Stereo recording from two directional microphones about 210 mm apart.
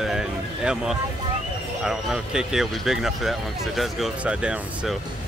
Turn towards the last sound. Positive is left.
turn(degrees=-5)  # may be behind; listen again after turning